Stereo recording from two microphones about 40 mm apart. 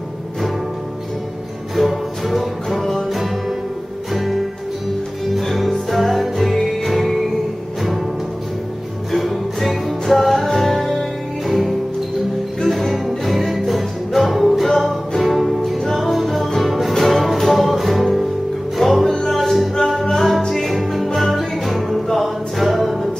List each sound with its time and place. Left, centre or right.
1.8 s music: centre
9.1 s music: centre
19.0 s music: centre